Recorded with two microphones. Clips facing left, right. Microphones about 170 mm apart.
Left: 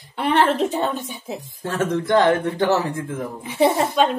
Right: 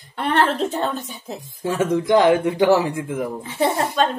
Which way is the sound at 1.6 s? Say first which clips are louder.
Right 3 dB; 10° right (ahead or behind).